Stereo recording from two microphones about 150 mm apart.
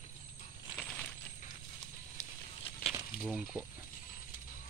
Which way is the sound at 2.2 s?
45° left (ahead or behind).